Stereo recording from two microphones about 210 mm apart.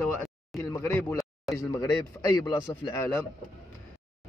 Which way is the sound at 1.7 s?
15° left (ahead or behind).